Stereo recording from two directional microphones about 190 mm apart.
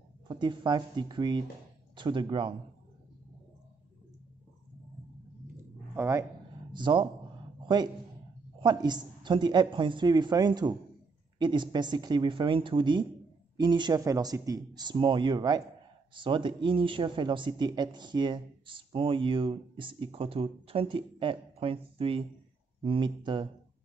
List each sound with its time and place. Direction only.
0.3 s speech: 25° right (ahead or behind)
5.9 s a man's voice: 15° right (ahead or behind)